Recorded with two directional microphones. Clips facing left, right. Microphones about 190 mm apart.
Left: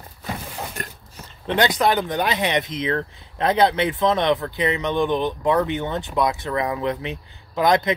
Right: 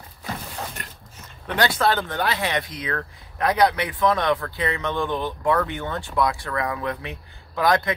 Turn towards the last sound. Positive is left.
turn(degrees=20)  # may be behind; listen again after turning